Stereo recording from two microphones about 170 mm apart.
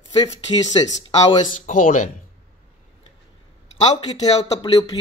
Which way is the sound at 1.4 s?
50° left (ahead or behind).